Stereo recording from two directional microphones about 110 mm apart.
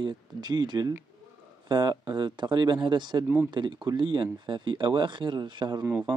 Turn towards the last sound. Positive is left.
turn(degrees=-15)  # may be behind; listen again after turning